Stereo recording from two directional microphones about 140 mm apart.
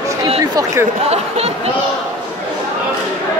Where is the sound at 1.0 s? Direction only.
50° right (ahead or behind).